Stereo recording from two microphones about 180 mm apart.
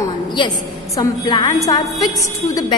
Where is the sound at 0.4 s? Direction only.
25° left (ahead or behind).